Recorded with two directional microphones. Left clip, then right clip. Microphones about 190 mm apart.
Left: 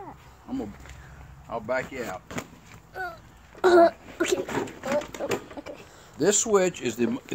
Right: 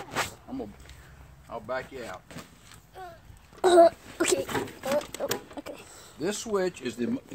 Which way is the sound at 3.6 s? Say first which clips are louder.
Even; 10° right (ahead or behind).